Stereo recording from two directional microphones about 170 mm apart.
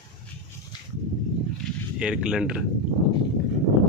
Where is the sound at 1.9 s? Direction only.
5° right (ahead or behind).